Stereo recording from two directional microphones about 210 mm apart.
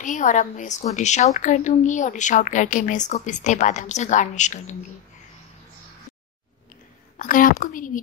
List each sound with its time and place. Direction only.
0.0 s a woman's voice: 35° left (ahead or behind)
7.2 s a woman's voice: 40° left (ahead or behind)